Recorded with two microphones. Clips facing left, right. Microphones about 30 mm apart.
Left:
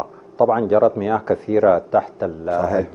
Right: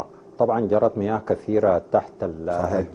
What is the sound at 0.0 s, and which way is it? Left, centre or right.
A man's voice, left.